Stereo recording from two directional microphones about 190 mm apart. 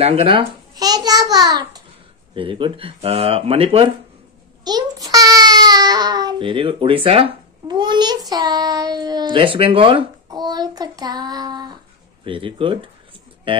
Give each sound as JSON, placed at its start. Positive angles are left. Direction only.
{"t": 0.0, "sound": "a child's voice", "side_deg": -30}
{"t": 0.7, "sound": "a sound", "side_deg": -20}
{"t": 2.3, "sound": "speech", "side_deg": -25}
{"t": 4.6, "sound": "a child's voice", "side_deg": -20}